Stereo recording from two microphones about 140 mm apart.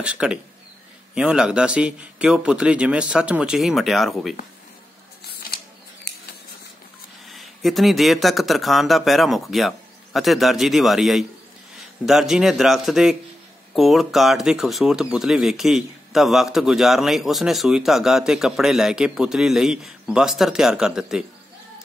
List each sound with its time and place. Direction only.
0.0 s a man's voice: 5° right (ahead or behind)
7.2 s speech: centre (ahead or behind)